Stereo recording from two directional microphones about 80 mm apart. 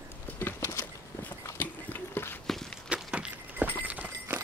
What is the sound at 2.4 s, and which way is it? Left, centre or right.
Walk, centre.